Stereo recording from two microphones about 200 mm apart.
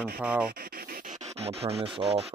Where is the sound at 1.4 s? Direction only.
30° right (ahead or behind).